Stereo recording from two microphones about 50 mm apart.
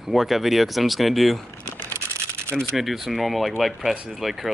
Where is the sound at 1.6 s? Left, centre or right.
Right.